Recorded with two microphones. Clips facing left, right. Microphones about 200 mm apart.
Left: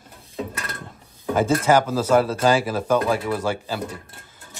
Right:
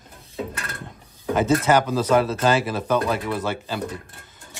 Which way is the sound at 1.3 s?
10° left (ahead or behind).